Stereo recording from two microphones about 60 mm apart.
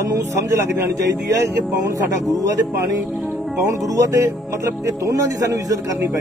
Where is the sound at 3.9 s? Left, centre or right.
Right.